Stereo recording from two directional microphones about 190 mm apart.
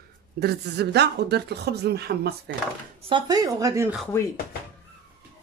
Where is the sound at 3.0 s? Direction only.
25° right (ahead or behind).